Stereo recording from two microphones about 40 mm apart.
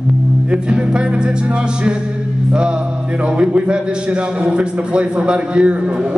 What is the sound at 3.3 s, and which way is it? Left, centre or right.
A man's voice, right.